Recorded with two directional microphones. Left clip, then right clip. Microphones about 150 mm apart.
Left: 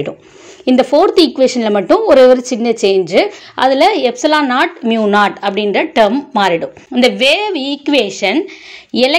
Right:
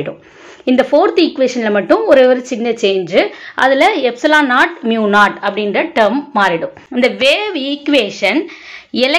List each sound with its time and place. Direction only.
0.7 s speech: 35° left (ahead or behind)